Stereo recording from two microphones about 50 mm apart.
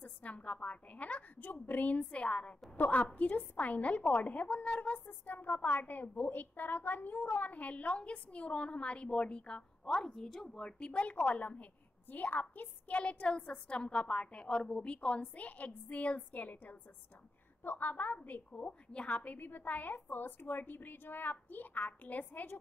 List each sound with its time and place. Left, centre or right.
0.0 s a woman's voice: left
2.0 s a woman's voice: left
10.9 s a woman's voice: left